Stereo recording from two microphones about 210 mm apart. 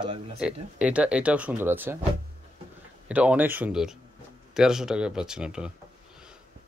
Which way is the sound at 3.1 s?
5° right (ahead or behind).